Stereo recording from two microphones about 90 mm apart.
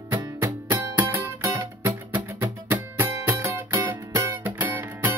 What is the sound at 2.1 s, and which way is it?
Music, 20° right (ahead or behind).